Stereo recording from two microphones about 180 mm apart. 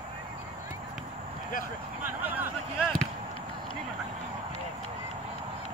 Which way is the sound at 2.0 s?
10° right (ahead or behind).